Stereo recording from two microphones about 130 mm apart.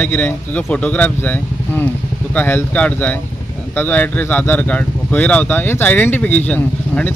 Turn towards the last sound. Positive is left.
turn(degrees=15)  # may be behind; listen again after turning